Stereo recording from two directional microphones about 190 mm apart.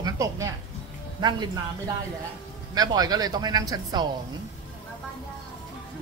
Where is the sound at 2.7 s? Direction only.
20° right (ahead or behind).